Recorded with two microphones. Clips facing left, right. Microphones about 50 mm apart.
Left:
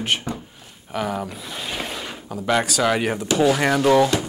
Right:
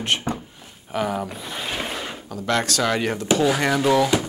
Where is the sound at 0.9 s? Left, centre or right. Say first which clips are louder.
Right 1 dB; centre.